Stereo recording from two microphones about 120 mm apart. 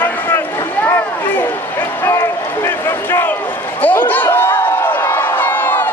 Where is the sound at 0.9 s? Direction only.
15° left (ahead or behind).